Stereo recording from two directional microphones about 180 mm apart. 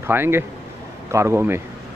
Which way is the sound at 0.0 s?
15° right (ahead or behind).